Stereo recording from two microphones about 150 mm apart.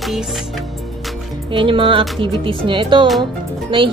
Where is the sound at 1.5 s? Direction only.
35° right (ahead or behind).